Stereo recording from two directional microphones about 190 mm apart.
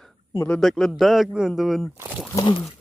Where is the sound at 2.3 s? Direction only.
20° left (ahead or behind).